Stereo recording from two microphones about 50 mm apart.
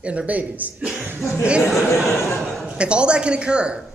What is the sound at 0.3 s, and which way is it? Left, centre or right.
Speech, right.